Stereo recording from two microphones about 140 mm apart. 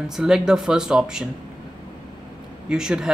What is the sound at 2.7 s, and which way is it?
Speech, 5° right (ahead or behind).